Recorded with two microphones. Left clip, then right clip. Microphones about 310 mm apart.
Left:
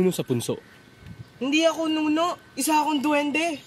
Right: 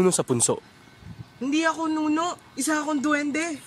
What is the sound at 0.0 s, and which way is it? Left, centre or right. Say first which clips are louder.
Speech: right 3 dB; right.